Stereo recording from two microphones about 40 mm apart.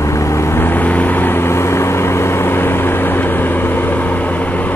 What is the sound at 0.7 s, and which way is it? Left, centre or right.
Vehicle, left.